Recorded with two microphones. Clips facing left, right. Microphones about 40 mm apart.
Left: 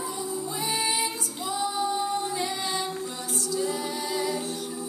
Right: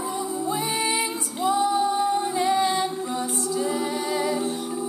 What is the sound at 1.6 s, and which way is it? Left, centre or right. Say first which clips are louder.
Music: right 2 dB; centre.